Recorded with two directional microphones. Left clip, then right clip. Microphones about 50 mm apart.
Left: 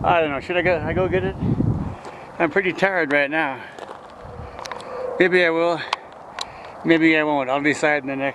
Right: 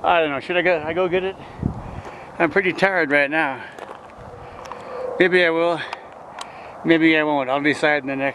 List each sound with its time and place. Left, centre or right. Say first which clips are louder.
0.0 s speech: right 1 dB; centre
2.3 s speech: right 1 dB; right
4.9 s speech: right 1 dB; centre
6.9 s speech: even; centre
8.0 s speech: right 1 dB; right